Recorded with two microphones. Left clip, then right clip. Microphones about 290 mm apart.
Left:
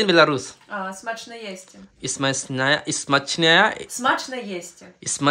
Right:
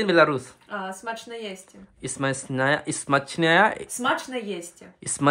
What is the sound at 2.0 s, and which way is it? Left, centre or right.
Speech, centre.